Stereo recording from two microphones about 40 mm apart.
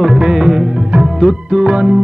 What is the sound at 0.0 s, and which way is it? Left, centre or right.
Music, centre.